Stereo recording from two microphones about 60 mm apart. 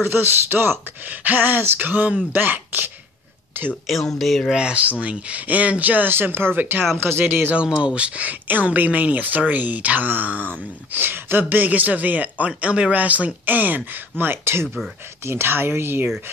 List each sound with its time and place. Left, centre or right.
0.0 s speech: right
3.8 s speech: centre
4.6 s speech: centre; by 7.5 s right
7.5 s speech: centre; by 16.1 s right